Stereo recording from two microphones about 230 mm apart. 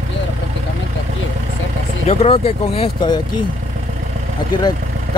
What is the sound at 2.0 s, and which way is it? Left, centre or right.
Speech, left.